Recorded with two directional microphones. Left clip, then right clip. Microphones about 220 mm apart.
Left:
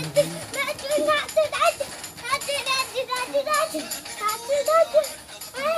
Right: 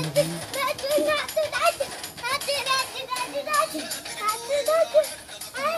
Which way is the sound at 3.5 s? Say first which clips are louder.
Even; 45° right (ahead or behind).